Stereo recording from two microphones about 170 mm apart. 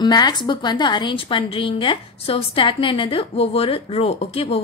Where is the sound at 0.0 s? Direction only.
25° left (ahead or behind).